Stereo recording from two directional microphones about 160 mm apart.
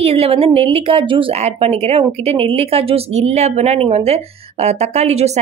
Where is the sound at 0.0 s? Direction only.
40° right (ahead or behind).